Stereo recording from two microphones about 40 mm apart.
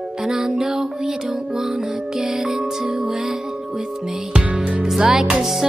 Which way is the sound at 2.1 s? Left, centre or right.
Centre.